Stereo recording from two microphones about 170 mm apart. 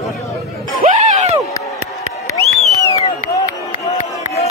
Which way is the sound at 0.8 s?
40° right (ahead or behind).